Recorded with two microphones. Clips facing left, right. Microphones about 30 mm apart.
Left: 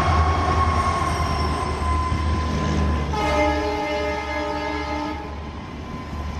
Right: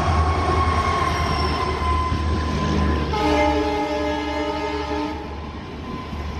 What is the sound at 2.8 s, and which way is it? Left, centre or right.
Train, right.